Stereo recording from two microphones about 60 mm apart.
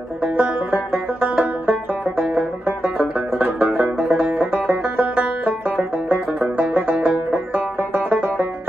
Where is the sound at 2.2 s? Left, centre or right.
Centre.